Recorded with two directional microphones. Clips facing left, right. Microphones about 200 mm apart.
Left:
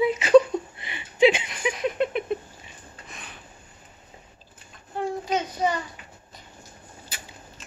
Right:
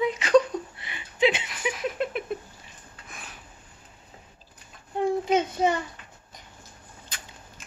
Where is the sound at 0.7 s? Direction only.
20° left (ahead or behind).